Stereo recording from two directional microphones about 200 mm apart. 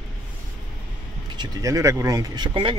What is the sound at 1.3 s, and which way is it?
Speech, 15° right (ahead or behind).